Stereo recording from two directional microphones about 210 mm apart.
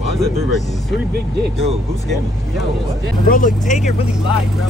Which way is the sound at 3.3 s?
40° left (ahead or behind).